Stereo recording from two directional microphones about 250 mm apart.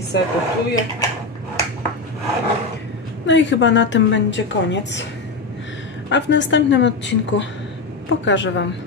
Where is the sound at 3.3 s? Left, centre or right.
Left.